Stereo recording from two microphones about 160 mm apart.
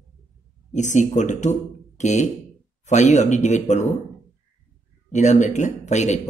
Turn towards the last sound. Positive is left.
turn(degrees=45)  # may be behind; listen again after turning